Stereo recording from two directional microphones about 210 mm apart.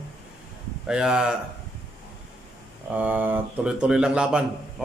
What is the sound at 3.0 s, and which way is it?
Speech, 5° right (ahead or behind).